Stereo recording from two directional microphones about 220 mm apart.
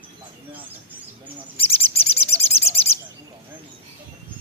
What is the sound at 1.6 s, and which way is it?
Bird, 25° left (ahead or behind).